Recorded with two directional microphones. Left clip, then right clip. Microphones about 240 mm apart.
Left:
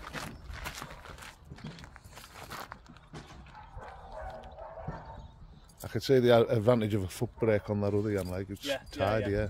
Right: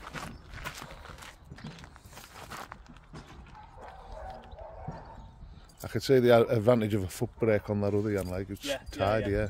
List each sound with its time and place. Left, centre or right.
0.2 s walk: centre
0.6 s walk: centre
2.3 s a sound: centre
5.8 s speech: centre